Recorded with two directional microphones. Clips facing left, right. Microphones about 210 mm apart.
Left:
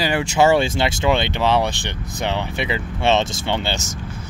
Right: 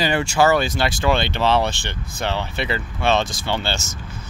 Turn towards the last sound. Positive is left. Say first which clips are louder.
# left 1 dB
turn(degrees=15)  # may be behind; listen again after turning